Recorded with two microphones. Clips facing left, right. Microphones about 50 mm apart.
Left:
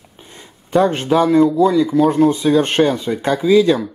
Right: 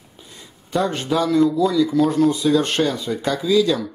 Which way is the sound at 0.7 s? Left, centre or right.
Left.